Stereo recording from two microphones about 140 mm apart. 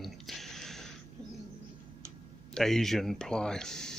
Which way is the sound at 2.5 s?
5° left (ahead or behind).